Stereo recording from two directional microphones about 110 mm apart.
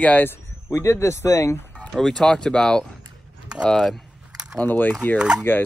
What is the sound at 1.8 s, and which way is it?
Speech, 5° left (ahead or behind).